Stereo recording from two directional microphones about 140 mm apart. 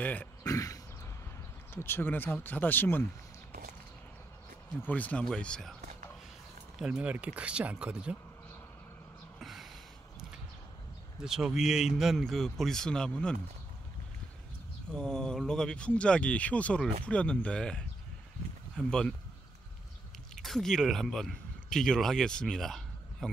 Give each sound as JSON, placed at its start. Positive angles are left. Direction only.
{"t": 0.0, "sound": "speech", "side_deg": 10}
{"t": 0.4, "sound": "throat clearing", "side_deg": 25}
{"t": 1.7, "sound": "speech", "side_deg": 15}
{"t": 4.7, "sound": "speech", "side_deg": 10}
{"t": 6.8, "sound": "speech", "side_deg": -10}
{"t": 9.4, "sound": "snort", "side_deg": 0}
{"t": 11.1, "sound": "a man's voice", "side_deg": -5}
{"t": 15.0, "sound": "speech", "side_deg": 5}
{"t": 18.9, "sound": "a man's voice", "side_deg": 5}
{"t": 20.4, "sound": "speech", "side_deg": 5}